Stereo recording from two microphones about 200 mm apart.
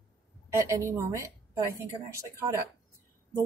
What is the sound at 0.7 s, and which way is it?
A woman's voice, 15° right (ahead or behind).